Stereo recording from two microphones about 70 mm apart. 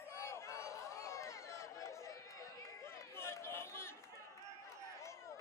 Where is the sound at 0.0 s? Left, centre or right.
Left.